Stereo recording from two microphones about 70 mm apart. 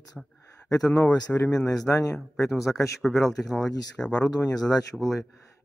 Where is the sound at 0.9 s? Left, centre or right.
Left.